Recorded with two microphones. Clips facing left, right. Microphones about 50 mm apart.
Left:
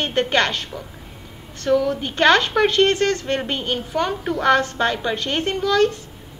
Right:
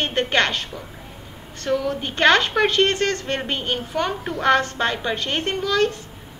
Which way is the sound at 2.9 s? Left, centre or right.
Right.